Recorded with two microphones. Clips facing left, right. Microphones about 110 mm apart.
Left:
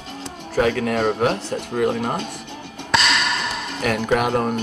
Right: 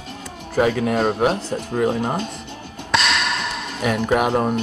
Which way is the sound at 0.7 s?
25° right (ahead or behind).